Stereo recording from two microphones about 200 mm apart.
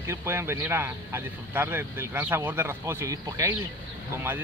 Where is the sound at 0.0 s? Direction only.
15° right (ahead or behind).